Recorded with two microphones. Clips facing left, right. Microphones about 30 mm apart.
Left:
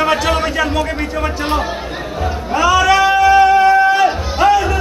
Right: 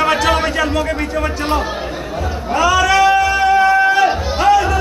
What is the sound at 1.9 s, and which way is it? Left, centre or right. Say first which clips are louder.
Chatter: left 1 dB; centre.